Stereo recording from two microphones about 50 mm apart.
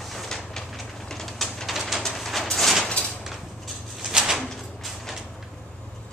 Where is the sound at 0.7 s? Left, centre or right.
Centre.